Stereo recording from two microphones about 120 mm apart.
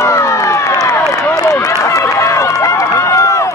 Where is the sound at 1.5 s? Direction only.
25° left (ahead or behind).